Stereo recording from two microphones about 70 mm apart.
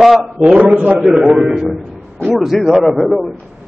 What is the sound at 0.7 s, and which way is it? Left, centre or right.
Speech, centre.